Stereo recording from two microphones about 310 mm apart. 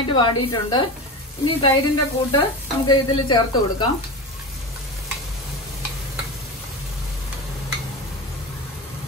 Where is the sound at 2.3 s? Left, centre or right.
Centre.